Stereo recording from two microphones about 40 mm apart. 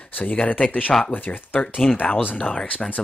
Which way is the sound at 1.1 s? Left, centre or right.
Left.